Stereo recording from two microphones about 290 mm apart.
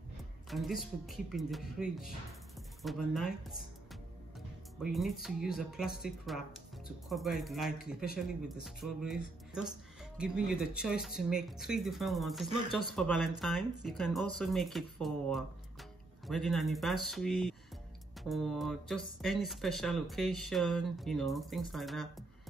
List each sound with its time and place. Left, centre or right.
0.5 s speech: centre
7.8 s speech: left
8.6 s speech: centre